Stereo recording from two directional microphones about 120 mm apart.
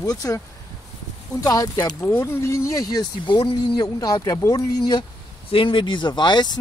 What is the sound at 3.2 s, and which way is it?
Speech, 40° left (ahead or behind).